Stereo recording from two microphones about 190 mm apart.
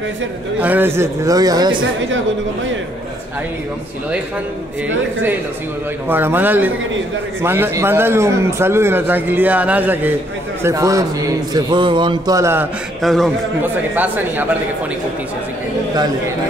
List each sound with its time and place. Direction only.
0.6 s a man's voice: 10° right (ahead or behind)
6.0 s a man's voice: 10° right (ahead or behind)
13.0 s a man's voice: centre (ahead or behind)
13.6 s a man's voice: 10° right (ahead or behind)